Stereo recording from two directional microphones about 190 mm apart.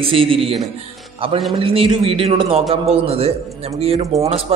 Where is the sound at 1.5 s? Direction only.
30° right (ahead or behind).